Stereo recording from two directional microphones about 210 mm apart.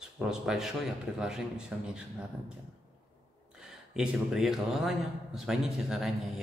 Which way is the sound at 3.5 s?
5° right (ahead or behind).